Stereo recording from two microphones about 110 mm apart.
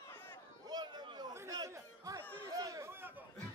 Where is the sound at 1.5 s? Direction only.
35° right (ahead or behind).